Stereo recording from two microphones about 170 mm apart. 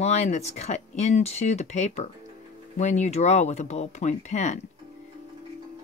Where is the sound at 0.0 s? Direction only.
40° left (ahead or behind).